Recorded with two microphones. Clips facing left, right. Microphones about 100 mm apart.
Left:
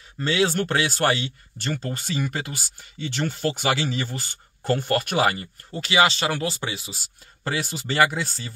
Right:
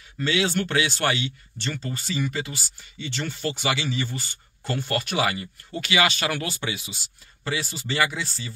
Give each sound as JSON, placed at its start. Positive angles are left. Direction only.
{"t": 0.2, "sound": "speech", "side_deg": 35}
{"t": 7.4, "sound": "speech", "side_deg": 50}